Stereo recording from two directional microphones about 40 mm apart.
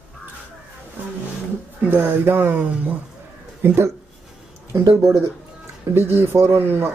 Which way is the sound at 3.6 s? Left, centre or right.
Right.